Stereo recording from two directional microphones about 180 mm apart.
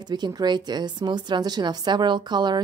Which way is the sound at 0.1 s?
25° right (ahead or behind).